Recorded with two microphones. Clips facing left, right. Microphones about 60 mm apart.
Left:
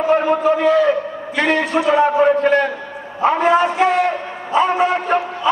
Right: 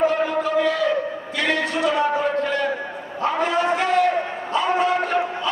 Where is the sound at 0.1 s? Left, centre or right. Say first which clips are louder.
Left 6 dB; left.